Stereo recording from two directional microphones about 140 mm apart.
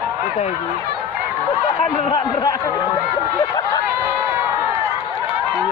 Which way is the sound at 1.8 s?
30° left (ahead or behind).